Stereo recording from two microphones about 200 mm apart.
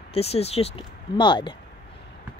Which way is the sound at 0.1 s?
30° left (ahead or behind).